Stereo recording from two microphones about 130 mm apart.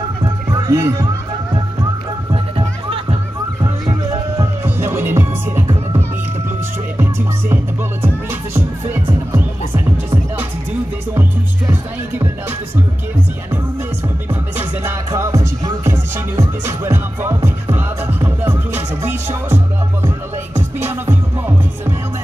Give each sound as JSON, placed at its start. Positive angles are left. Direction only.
{"t": 0.2, "sound": "music", "side_deg": -30}
{"t": 2.3, "sound": "music", "side_deg": -45}
{"t": 3.6, "sound": "music", "side_deg": -30}
{"t": 4.6, "sound": "music", "side_deg": -20}
{"t": 14.3, "sound": "music", "side_deg": -20}